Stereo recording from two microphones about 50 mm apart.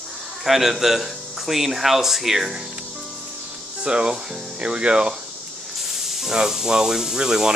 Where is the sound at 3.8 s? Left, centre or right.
Centre.